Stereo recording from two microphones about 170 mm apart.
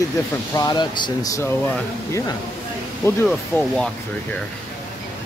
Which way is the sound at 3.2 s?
Centre (ahead or behind).